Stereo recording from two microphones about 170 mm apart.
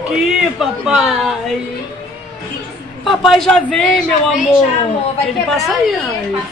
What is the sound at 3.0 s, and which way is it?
Speech, centre (ahead or behind).